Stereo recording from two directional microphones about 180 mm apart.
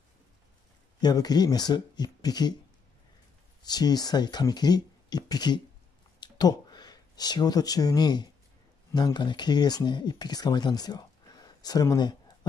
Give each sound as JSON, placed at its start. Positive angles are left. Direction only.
{"t": 1.0, "sound": "speech", "side_deg": 20}
{"t": 3.6, "sound": "speech", "side_deg": 20}